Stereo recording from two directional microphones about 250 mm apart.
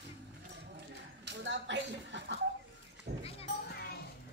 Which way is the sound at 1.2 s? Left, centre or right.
Right.